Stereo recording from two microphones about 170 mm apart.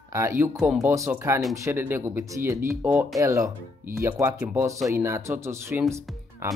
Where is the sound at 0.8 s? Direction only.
15° right (ahead or behind).